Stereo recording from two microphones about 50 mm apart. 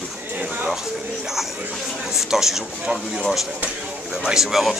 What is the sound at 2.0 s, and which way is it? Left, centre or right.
Speech, centre.